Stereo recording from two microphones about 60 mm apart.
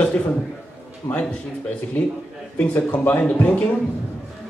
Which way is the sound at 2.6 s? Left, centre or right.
Left.